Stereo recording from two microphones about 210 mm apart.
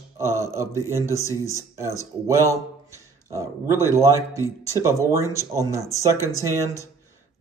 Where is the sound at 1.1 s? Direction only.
15° left (ahead or behind).